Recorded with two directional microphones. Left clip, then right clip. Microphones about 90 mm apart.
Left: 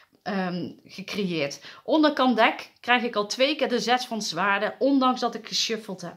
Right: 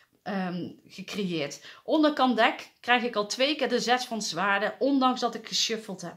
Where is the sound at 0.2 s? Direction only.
25° left (ahead or behind).